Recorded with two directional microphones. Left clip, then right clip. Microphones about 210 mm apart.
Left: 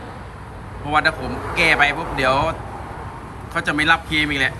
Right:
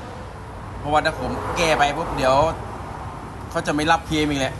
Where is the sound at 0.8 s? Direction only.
15° right (ahead or behind).